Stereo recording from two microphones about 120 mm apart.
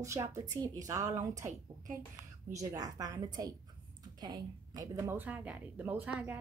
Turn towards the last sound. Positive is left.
turn(degrees=-10)  # may be behind; listen again after turning